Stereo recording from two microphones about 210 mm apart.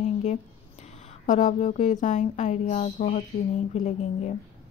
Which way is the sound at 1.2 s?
35° left (ahead or behind).